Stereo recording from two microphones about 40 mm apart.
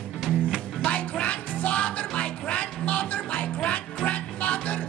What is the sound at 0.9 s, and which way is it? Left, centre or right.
Music, left.